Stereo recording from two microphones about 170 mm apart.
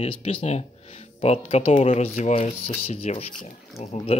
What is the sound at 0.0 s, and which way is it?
Speech, 35° left (ahead or behind).